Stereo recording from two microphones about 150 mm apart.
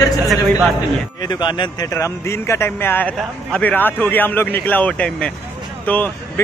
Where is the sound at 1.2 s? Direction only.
30° left (ahead or behind).